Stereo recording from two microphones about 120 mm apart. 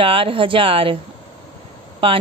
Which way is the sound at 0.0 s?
50° right (ahead or behind).